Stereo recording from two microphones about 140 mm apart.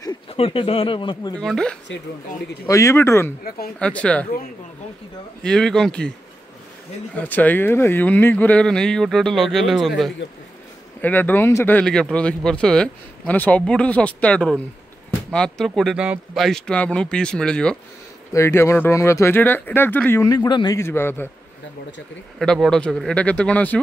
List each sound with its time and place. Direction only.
0.3 s speech: 40° left (ahead or behind)
1.3 s speech: 5° left (ahead or behind)
2.6 s speech: 20° left (ahead or behind)
5.4 s speech: 5° left (ahead or behind)
7.2 s speech: 10° left (ahead or behind)
11.0 s speech: 10° left (ahead or behind)
18.3 s speech: 20° left (ahead or behind)
20.2 s speech: 30° left (ahead or behind)
20.7 s speech: 15° left (ahead or behind)
22.4 s speech: 5° left (ahead or behind)